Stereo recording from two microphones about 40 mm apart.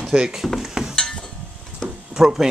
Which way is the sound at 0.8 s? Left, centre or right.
Right.